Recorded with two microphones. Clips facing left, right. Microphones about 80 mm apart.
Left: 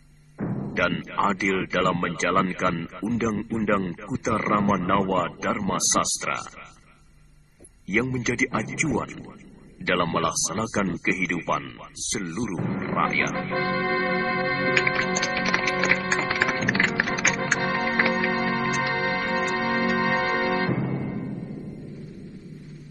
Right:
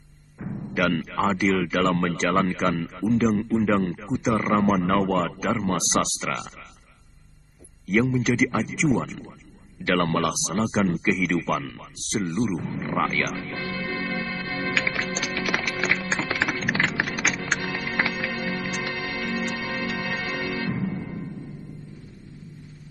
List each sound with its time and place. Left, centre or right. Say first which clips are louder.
0.4 s timpani: left 5 dB; left
0.7 s speech: right 1 dB; centre
7.8 s speech: right 3 dB; centre
13.5 s music: left 6 dB; left
14.7 s music: left 4 dB; centre
18.3 s music: left 5 dB; left